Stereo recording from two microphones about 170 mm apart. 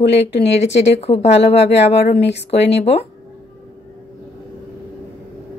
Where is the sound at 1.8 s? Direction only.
90° left.